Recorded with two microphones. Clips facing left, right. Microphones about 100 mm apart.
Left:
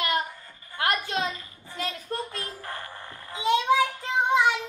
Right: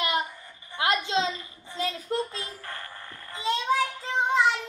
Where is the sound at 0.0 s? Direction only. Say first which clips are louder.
Even; 20° right (ahead or behind).